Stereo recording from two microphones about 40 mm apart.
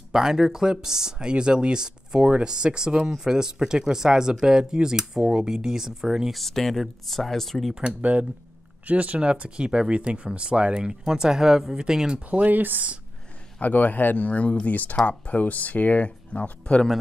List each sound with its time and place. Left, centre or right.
0.1 s speech: centre
6.3 s speech: centre
7.8 s speech: right; by 12.2 s centre
12.3 s speech: right
13.6 s speech: left